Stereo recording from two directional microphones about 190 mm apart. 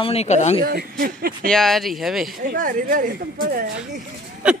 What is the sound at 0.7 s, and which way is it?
Speech, 50° right (ahead or behind).